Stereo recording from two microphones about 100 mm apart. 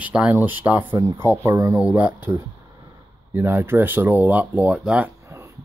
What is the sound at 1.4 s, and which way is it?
Speech, 30° right (ahead or behind).